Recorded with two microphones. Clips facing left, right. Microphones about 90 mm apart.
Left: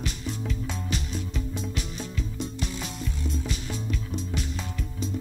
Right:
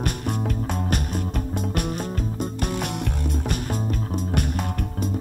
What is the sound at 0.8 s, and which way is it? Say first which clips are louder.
Music: right 6 dB; 55° right (ahead or behind).